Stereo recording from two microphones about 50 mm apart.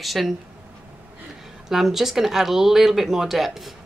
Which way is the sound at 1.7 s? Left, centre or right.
Centre.